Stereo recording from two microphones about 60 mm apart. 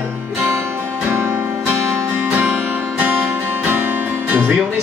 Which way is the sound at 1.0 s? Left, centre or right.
Right.